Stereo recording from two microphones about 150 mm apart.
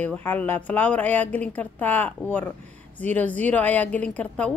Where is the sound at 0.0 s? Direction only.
10° left (ahead or behind).